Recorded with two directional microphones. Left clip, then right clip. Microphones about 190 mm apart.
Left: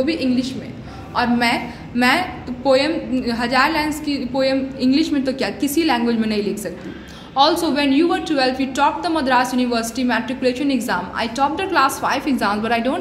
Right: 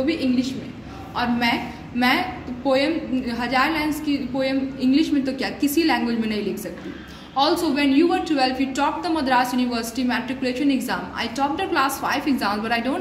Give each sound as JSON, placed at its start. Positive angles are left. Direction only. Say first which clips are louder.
{"t": 0.0, "sound": "a woman's voice", "louder": "left 2 dB", "side_deg": 15}